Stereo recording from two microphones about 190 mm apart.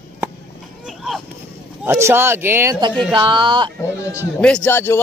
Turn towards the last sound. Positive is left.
turn(degrees=10)  # may be behind; listen again after turning